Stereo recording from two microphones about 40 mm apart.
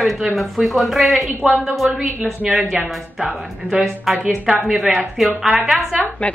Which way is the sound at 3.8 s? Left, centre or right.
Centre.